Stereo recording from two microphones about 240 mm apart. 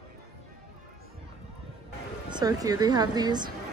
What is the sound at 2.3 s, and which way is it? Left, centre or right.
Speech, centre.